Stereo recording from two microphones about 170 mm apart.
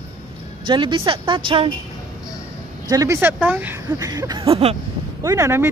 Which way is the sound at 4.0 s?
20° right (ahead or behind).